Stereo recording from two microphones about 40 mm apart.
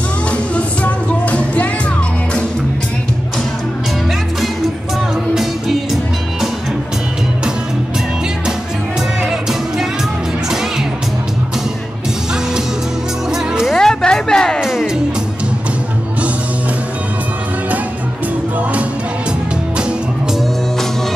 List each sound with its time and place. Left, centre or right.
0.6 s music: left
5.3 s music: centre
9.2 s music: centre
13.7 s a sound: centre
14.6 s music: centre